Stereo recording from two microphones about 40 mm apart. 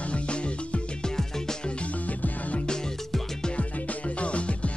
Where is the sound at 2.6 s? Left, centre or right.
Centre.